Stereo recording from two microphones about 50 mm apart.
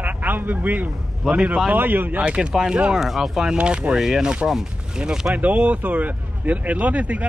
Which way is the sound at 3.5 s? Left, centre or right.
Right.